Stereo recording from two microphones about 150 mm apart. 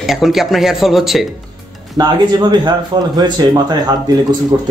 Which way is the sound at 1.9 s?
30° right (ahead or behind).